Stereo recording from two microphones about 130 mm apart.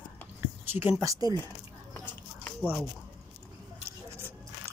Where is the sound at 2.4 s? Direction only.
10° left (ahead or behind).